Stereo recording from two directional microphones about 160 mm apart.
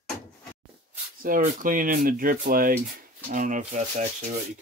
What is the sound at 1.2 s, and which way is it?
Speech, 60° right (ahead or behind).